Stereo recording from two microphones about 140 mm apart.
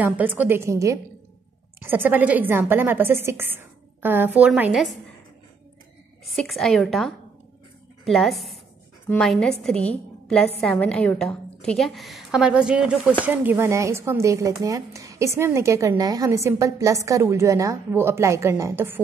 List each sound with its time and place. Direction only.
0.0 s a woman's voice: 10° right (ahead or behind)
6.2 s a woman's voice: centre (ahead or behind); by 18.9 s 20° right (ahead or behind)